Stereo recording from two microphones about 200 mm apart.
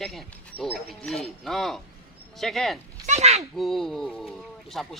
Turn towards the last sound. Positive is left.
turn(degrees=0)  # may be behind; listen again after turning